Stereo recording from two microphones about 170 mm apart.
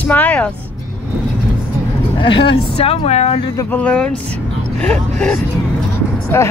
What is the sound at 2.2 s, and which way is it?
Speech, 30° left (ahead or behind).